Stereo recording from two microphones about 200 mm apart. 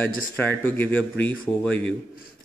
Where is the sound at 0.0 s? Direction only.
10° left (ahead or behind).